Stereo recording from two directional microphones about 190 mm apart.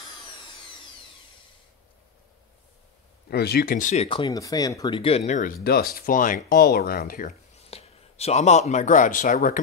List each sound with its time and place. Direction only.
3.3 s speech: 55° left (ahead or behind)